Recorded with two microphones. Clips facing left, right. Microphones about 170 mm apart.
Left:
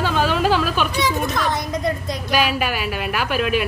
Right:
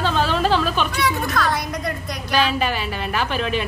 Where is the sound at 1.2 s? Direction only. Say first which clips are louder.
Even; 20° left (ahead or behind).